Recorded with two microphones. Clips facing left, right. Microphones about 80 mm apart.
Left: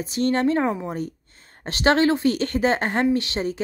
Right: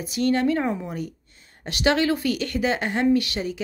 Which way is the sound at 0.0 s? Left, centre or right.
Left.